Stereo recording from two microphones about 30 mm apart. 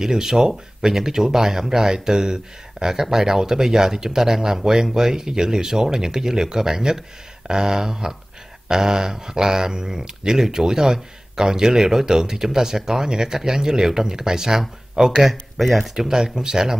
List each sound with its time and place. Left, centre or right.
0.0 s speech: centre
15.6 s speech: centre
15.9 s speech: centre